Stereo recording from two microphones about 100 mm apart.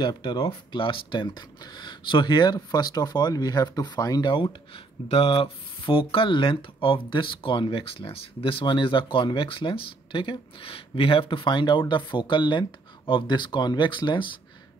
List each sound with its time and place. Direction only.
0.0 s speech: 50° left (ahead or behind)